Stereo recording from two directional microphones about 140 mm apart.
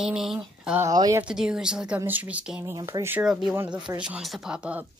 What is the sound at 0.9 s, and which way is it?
Speech, 25° right (ahead or behind).